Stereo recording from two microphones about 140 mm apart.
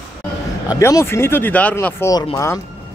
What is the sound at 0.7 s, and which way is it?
Speech, 20° left (ahead or behind).